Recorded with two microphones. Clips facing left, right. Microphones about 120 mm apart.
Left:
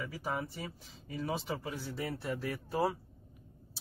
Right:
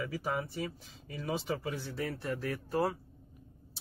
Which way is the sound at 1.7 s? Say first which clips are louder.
Right 2 dB; 5° left (ahead or behind).